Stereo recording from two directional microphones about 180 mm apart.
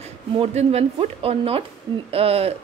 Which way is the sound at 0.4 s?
35° right (ahead or behind).